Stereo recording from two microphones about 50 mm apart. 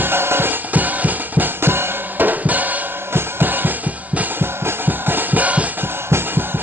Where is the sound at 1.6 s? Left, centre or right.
Right.